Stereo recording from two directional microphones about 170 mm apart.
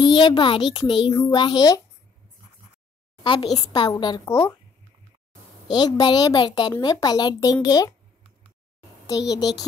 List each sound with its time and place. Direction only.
0.0 s speech: 25° left (ahead or behind)
3.3 s speech: 25° left (ahead or behind)
5.7 s speech: 25° left (ahead or behind)
9.3 s speech: 20° left (ahead or behind)